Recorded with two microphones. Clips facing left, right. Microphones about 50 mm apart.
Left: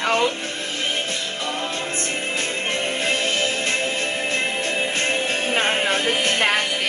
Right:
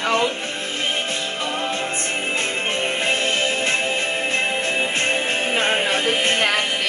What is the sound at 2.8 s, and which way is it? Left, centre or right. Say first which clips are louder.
Music: right 2 dB; centre.